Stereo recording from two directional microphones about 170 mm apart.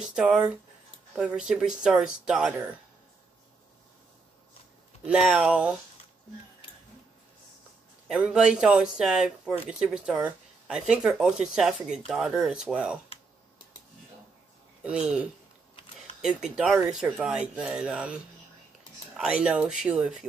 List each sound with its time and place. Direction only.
0.0 s speech: 5° right (ahead or behind)
5.0 s speech: 5° right (ahead or behind)
8.1 s speech: 5° right (ahead or behind)
14.8 s speech: 5° right (ahead or behind)